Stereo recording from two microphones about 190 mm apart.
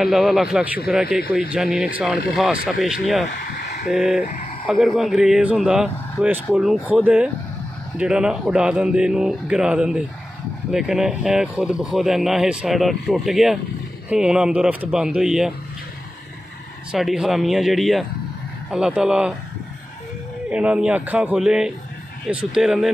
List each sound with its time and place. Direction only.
0.0 s speech: centre (ahead or behind)
3.3 s caw: 45° left (ahead or behind)
3.9 s speech: centre (ahead or behind)
4.3 s a sound: 40° left (ahead or behind)
4.6 s speech: centre (ahead or behind)
16.9 s speech: 5° right (ahead or behind)
20.4 s speech: 5° right (ahead or behind)